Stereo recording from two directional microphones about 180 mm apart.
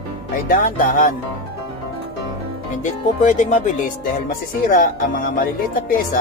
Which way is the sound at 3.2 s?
45° left (ahead or behind).